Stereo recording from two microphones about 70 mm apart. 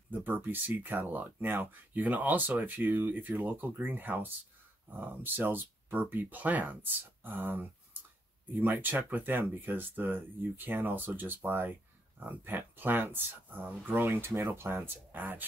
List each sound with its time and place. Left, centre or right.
0.1 s speech: right